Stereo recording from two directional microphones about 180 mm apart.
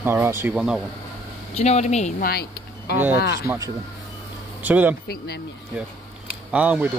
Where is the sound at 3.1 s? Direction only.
65° left (ahead or behind).